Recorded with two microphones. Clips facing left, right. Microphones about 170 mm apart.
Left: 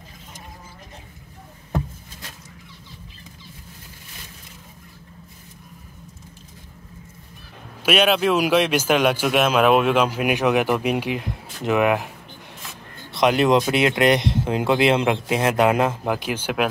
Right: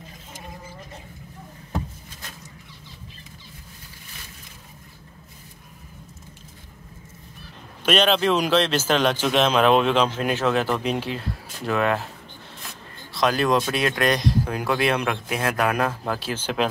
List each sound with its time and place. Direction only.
7.8 s a man's voice: 10° left (ahead or behind)